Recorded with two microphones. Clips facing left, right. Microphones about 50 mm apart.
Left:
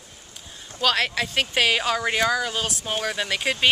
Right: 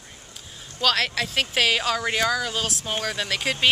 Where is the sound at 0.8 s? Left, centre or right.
Centre.